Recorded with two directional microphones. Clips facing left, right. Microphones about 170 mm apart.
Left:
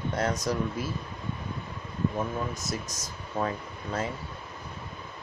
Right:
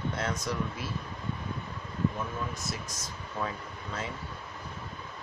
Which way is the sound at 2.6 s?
40° left (ahead or behind).